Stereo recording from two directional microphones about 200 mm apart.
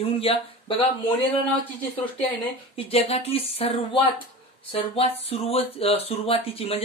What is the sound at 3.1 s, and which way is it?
Speech, 30° left (ahead or behind).